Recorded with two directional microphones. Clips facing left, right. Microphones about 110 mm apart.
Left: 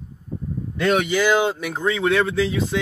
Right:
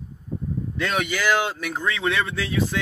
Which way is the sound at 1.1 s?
25° left (ahead or behind).